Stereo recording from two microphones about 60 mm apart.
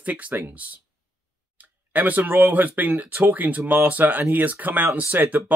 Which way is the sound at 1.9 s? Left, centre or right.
Right.